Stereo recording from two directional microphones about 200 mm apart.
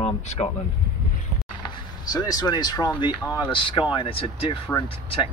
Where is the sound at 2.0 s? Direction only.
20° left (ahead or behind).